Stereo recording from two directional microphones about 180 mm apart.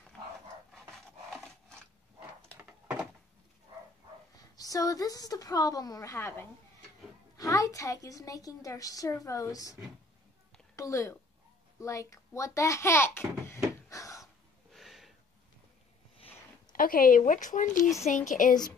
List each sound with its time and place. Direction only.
2.5 s door: 10° right (ahead or behind)
4.4 s a woman's voice: 20° left (ahead or behind)
10.8 s a woman's voice: 15° left (ahead or behind)
13.8 s a sound: 15° left (ahead or behind)
14.2 s gasp: centre (ahead or behind)
16.7 s speech: 50° left (ahead or behind)